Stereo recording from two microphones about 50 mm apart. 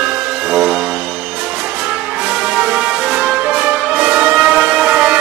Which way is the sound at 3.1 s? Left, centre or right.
Right.